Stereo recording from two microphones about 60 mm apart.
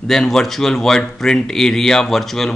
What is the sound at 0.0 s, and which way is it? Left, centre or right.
Speech, centre.